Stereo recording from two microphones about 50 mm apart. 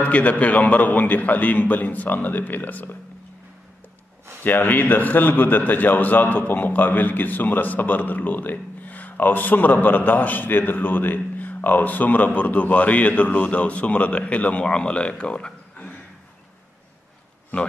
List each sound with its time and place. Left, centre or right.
0.0 s a man's voice: left
4.4 s a man's voice: left; by 15.5 s centre